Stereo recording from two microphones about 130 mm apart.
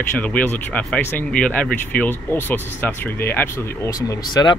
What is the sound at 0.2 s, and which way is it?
Speech, 10° left (ahead or behind).